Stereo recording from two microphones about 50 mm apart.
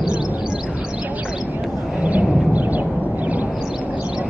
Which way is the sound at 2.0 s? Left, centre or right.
Right.